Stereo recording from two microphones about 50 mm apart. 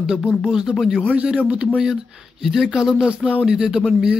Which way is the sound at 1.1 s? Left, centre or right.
Right.